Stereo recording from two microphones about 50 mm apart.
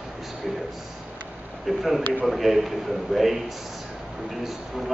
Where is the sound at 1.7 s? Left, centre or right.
Centre.